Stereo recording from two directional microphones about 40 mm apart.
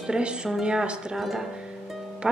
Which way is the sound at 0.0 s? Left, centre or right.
Right.